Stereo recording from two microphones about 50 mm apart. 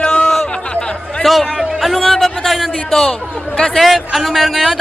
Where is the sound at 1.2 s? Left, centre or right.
Centre.